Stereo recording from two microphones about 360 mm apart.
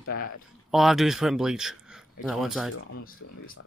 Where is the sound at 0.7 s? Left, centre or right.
Centre.